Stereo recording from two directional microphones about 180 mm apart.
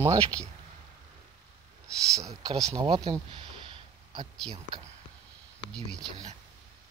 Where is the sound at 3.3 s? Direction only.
30° right (ahead or behind).